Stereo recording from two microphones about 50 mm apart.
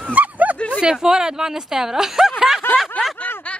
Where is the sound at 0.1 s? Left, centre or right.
Right.